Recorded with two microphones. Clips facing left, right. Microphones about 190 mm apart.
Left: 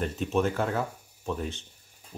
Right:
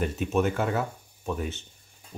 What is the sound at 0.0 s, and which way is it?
Speech, 5° right (ahead or behind).